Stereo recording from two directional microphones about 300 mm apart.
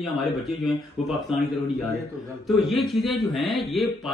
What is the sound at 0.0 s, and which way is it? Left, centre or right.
A man's voice, centre.